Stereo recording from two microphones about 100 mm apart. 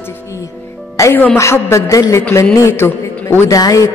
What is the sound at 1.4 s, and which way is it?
A man's voice, 30° left (ahead or behind).